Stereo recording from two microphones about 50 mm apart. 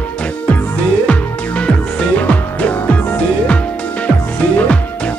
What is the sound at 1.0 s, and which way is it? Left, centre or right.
Music, left.